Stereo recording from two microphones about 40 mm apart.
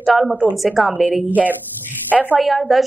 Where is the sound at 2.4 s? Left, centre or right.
Centre.